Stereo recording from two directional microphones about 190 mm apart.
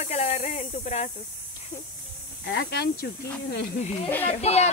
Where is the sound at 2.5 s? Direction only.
60° left (ahead or behind).